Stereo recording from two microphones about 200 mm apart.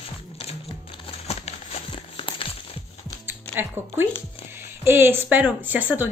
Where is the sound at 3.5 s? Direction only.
10° right (ahead or behind).